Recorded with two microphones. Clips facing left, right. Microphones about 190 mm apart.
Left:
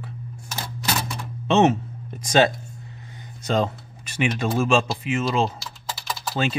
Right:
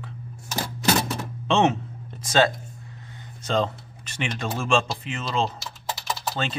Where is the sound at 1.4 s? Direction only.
5° left (ahead or behind).